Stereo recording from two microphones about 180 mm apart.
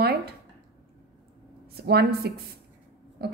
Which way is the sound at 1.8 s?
60° right (ahead or behind).